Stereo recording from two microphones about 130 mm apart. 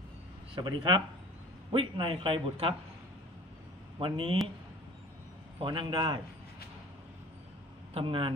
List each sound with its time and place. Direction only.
0.6 s a man's voice: 35° right (ahead or behind)
4.0 s a man's voice: 40° right (ahead or behind)
5.6 s a man's voice: 40° right (ahead or behind)
7.9 s speech: 45° right (ahead or behind)